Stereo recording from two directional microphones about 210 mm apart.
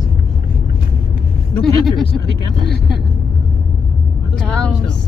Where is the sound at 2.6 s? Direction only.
50° left (ahead or behind).